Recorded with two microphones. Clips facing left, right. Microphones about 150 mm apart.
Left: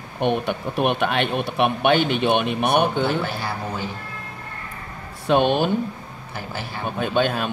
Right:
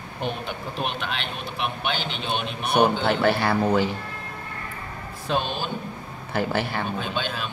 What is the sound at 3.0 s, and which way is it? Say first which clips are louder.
Speech: right 3 dB; 65° right (ahead or behind).